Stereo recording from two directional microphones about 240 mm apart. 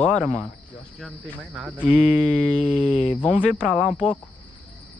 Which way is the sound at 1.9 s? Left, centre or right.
Left.